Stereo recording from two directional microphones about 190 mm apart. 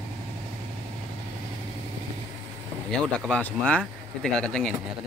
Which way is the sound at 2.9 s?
5° left (ahead or behind).